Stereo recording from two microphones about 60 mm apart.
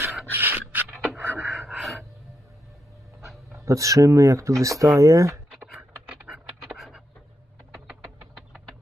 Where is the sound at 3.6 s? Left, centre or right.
Right.